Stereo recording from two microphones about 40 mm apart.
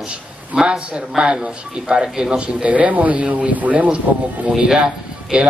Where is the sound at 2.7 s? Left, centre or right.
Right.